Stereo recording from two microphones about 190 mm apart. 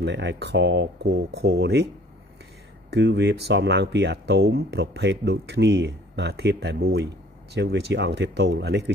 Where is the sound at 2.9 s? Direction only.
65° right (ahead or behind).